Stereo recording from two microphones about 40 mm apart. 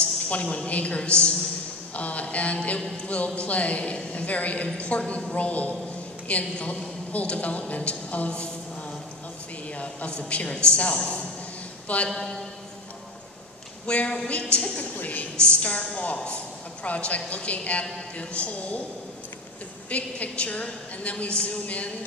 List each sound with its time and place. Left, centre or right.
0.0 s a woman's voice: left
10.5 s a woman's voice: left
13.8 s a woman's voice: left
15.0 s a woman's voice: left
15.3 s a woman's voice: left
19.9 s a woman's voice: left